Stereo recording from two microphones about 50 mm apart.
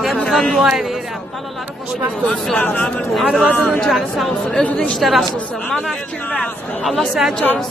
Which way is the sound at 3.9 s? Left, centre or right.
Centre.